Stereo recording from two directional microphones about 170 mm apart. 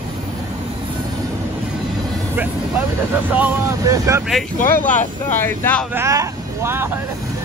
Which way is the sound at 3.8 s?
20° right (ahead or behind).